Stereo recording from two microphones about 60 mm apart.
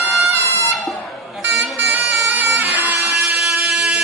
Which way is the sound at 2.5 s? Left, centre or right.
Right.